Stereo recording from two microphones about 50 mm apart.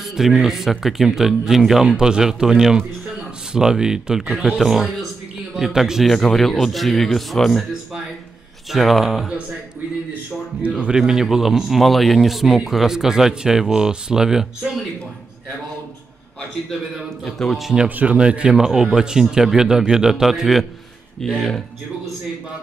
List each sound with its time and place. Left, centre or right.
0.0 s a man's voice: centre
6.1 s a man's voice: centre
8.7 s a man's voice: centre
11.0 s a man's voice: centre
17.2 s a man's voice: centre
17.6 s speech: centre
17.8 s speech: right
18.1 s speech: right; by 20.6 s centre
21.2 s speech: centre